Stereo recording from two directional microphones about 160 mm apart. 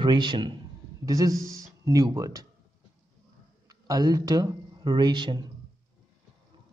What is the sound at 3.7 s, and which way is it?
Speech, 25° right (ahead or behind).